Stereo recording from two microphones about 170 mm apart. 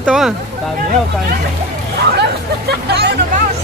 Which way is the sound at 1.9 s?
75° right (ahead or behind).